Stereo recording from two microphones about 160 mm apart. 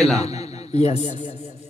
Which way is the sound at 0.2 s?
40° left (ahead or behind).